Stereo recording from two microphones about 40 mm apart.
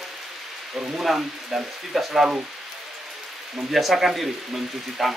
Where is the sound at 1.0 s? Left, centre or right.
Centre.